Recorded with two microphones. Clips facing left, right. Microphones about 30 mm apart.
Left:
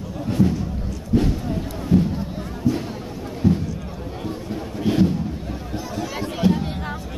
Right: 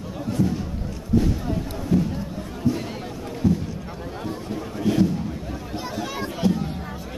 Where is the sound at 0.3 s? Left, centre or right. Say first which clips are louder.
Left 4 dB; left.